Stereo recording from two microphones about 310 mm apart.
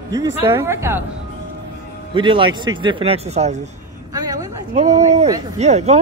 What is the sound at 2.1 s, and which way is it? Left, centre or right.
Speech, centre.